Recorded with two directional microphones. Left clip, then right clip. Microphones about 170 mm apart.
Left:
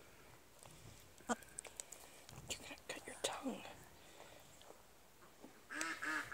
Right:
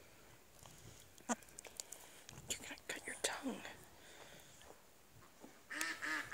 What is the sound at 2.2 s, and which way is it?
Whispering, 10° right (ahead or behind).